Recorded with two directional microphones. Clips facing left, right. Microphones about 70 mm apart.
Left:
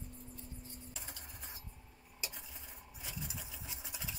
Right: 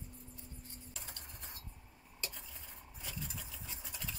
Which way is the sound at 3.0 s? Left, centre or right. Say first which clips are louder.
Even; centre.